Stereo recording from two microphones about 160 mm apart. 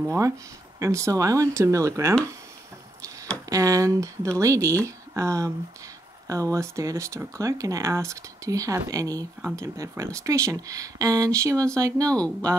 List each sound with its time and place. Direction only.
0.0 s speech: 15° right (ahead or behind)
3.4 s speech: 20° right (ahead or behind)
12.1 s speech: 5° left (ahead or behind)